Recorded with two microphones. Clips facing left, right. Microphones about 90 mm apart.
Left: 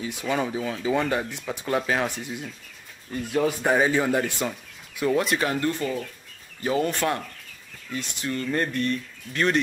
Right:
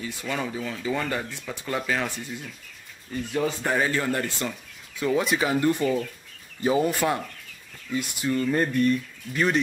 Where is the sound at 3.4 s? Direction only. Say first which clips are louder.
Left 4 dB; 10° left (ahead or behind).